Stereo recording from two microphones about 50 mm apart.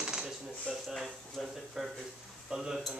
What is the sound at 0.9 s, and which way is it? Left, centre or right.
Speech, centre.